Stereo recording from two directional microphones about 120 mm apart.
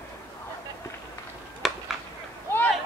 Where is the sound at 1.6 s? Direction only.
Centre (ahead or behind).